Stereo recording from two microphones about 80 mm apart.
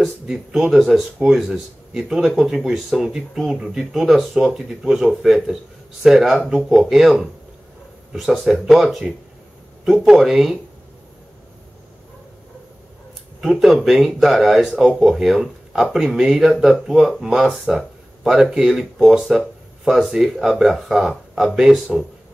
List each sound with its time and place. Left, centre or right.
0.7 s speech: centre
13.4 s speech: centre
21.1 s speech: centre
21.5 s speech: centre